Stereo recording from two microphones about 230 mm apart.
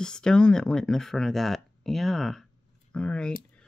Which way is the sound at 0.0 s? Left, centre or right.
Centre.